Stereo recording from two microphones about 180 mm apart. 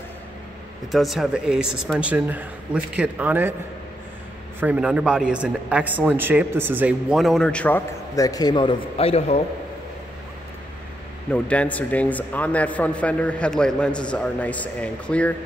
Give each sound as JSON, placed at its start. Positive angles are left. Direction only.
{"t": 0.9, "sound": "a man's voice", "side_deg": 0}
{"t": 4.6, "sound": "a man's voice", "side_deg": -5}
{"t": 8.2, "sound": "a man's voice", "side_deg": 20}
{"t": 11.3, "sound": "a man's voice", "side_deg": 5}